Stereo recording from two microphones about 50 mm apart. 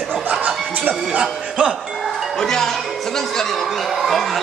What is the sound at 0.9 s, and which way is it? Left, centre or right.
Music, right.